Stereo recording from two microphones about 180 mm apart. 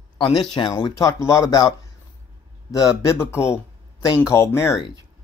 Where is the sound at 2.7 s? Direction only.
20° left (ahead or behind).